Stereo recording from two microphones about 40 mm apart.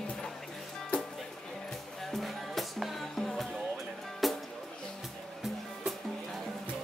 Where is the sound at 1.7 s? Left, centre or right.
Centre.